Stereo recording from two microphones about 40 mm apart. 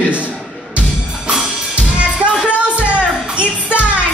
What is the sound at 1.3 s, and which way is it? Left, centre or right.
Drum kit, right.